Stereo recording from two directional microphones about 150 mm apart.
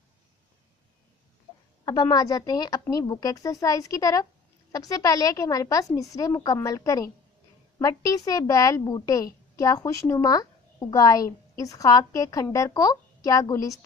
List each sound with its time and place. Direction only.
1.9 s a child's voice: 25° left (ahead or behind)